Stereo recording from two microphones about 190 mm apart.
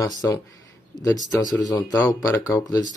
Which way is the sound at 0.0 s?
20° left (ahead or behind).